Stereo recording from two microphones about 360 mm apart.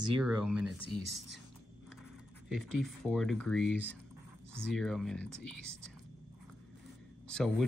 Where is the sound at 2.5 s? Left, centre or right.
Centre.